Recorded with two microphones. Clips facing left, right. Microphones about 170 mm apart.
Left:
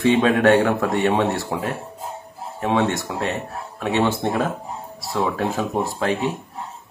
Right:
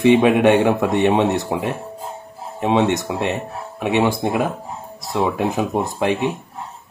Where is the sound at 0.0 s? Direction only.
15° right (ahead or behind).